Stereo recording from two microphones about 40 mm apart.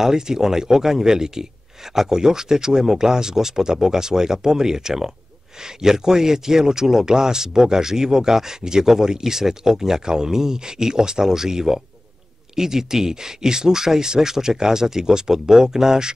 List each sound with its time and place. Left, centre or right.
0.0 s speech: centre